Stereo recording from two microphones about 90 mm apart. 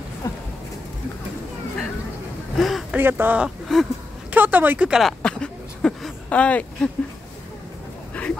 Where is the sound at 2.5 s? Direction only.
Centre (ahead or behind).